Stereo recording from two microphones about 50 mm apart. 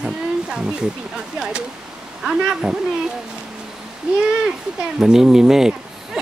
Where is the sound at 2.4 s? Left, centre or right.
Centre.